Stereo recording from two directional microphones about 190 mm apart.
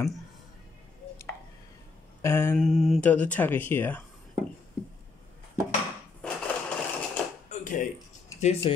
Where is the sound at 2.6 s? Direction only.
Centre (ahead or behind).